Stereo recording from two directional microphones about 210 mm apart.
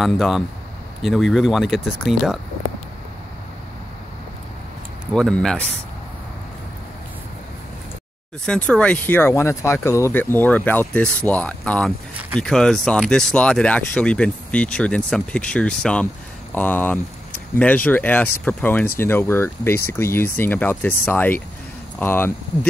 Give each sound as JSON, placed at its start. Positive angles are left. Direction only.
{"t": 0.0, "sound": "speech", "side_deg": 0}
{"t": 5.1, "sound": "speech", "side_deg": 5}
{"t": 8.5, "sound": "speech", "side_deg": 5}